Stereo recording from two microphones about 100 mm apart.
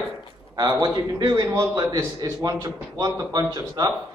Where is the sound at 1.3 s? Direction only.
25° right (ahead or behind).